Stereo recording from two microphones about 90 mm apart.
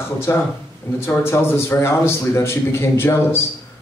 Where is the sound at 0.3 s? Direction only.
35° left (ahead or behind).